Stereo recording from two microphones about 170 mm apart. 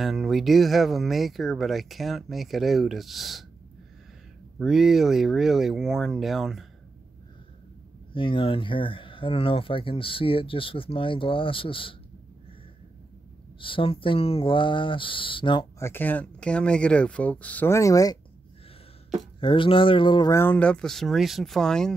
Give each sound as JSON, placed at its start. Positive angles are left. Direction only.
{"t": 0.0, "sound": "speech", "side_deg": 0}
{"t": 4.6, "sound": "speech", "side_deg": -5}
{"t": 8.1, "sound": "speech", "side_deg": 30}
{"t": 13.6, "sound": "speech", "side_deg": 30}
{"t": 15.8, "sound": "speech", "side_deg": 10}
{"t": 19.4, "sound": "speech", "side_deg": 30}